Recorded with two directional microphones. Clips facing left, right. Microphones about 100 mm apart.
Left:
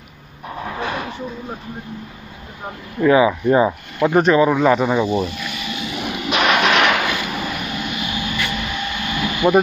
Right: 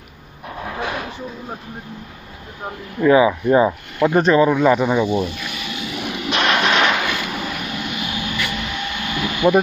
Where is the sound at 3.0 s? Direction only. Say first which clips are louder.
Even; 5° left (ahead or behind).